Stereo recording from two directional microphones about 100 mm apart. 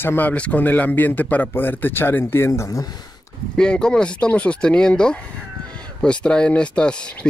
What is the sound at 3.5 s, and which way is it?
Speech, 10° left (ahead or behind).